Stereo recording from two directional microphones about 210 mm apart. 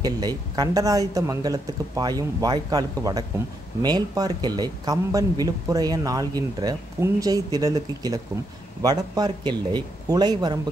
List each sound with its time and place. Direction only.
0.0 s a man's voice: 20° right (ahead or behind)